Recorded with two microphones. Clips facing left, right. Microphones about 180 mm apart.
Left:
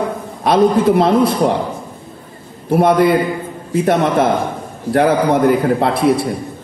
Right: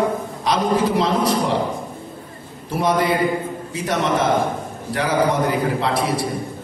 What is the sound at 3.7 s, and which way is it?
A man's voice, 55° left (ahead or behind).